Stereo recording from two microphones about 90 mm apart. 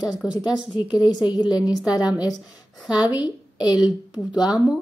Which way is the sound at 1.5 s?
45° left (ahead or behind).